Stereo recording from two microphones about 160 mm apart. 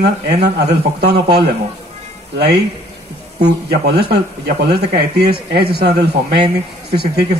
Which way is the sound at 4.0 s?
85° right.